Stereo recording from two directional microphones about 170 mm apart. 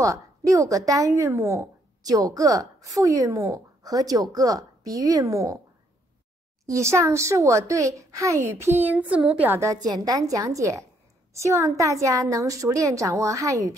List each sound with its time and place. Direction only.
0.0 s a woman's voice: 20° right (ahead or behind)
6.6 s speech: 15° right (ahead or behind)